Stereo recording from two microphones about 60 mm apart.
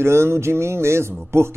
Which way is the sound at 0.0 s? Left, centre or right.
Right.